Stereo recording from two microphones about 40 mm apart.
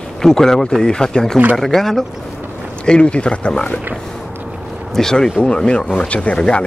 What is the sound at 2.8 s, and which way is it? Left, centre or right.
Speech, left.